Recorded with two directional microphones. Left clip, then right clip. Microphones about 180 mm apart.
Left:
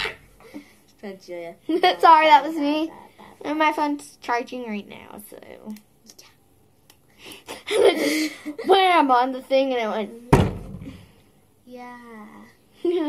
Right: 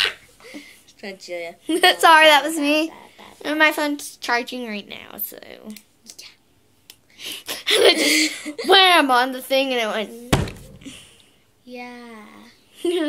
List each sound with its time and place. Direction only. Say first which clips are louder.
0.5 s a sound: right 3 dB; 10° left (ahead or behind)
1.7 s a woman's voice: right 1 dB; 20° right (ahead or behind)
3.4 s speech: right 3 dB; 10° right (ahead or behind)
5.8 s computer keyboard: right 7 dB; 10° left (ahead or behind)
7.2 s a sound: right 8 dB; 15° right (ahead or behind)
8.0 s laughter: right 5 dB; 10° left (ahead or behind)
8.6 s a woman's voice: right 3 dB; 20° right (ahead or behind)
11.7 s speech: right 3 dB; 15° left (ahead or behind)
12.7 s a sound: right 1 dB; 20° right (ahead or behind)